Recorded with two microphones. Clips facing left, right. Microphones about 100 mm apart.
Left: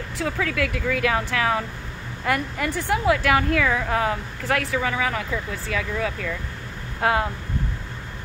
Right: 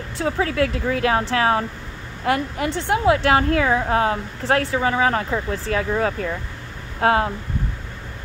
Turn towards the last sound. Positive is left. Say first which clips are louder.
# right 4 dB
turn(degrees=-35)  # may be behind; listen again after turning